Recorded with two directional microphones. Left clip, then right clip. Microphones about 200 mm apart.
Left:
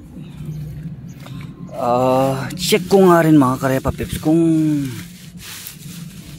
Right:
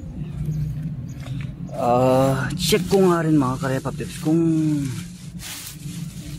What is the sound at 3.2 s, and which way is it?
Speech, 45° left (ahead or behind).